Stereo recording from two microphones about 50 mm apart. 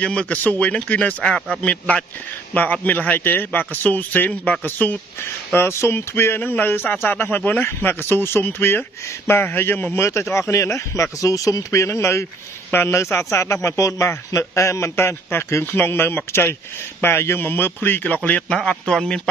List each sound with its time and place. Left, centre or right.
0.0 s a man's voice: left
5.2 s speech: left
9.9 s a man's voice: left
18.5 s a man's voice: centre